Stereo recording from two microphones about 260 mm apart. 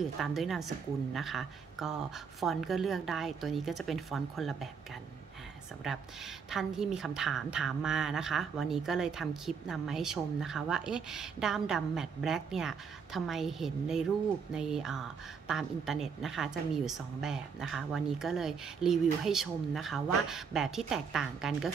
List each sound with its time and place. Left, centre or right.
0.0 s a woman's voice: centre
5.9 s a woman's voice: centre